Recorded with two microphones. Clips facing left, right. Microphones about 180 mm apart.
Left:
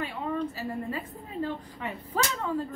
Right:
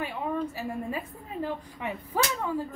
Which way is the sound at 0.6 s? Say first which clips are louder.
Even; 15° right (ahead or behind).